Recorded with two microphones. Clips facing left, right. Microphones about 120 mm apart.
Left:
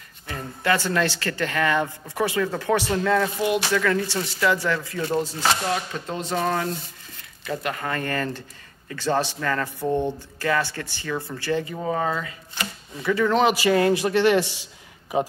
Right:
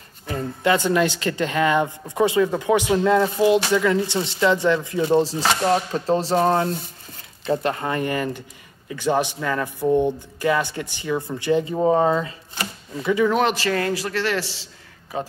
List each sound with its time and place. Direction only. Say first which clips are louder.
0.7 s speech: right 3 dB; 20° right (ahead or behind)
5.6 s a sound: right 6 dB; 35° right (ahead or behind)
7.4 s speech: right 5 dB; 30° right (ahead or behind)
13.4 s a man's voice: left 2 dB; 10° left (ahead or behind)